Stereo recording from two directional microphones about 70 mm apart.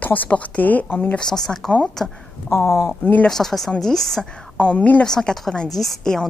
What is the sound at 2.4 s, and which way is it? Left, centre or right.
Speech, left.